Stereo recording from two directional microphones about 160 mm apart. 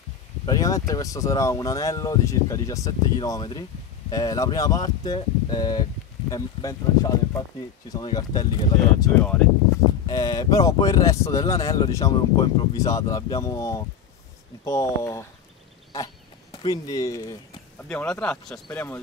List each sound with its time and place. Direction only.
0.5 s speech: 20° left (ahead or behind)
16.5 s speech: 25° left (ahead or behind)
17.8 s speech: 10° left (ahead or behind)